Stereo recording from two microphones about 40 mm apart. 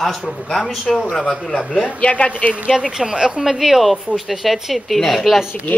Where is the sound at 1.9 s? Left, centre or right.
Left.